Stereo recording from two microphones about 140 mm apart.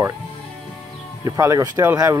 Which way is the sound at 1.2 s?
20° right (ahead or behind).